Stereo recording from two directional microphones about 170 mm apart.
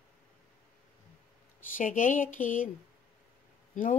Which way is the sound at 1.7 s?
50° left (ahead or behind).